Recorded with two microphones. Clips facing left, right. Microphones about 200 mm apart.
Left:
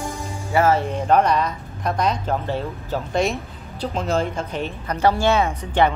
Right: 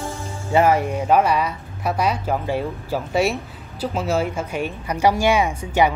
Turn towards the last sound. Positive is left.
turn(degrees=-10)  # may be behind; listen again after turning